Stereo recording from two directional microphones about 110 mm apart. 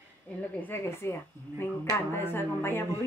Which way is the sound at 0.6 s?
20° left (ahead or behind).